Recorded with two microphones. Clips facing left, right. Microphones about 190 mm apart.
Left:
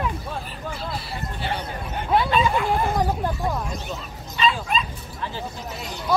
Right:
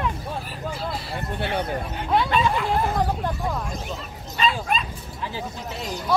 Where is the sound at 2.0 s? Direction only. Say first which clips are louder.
Left 1 dB; centre (ahead or behind).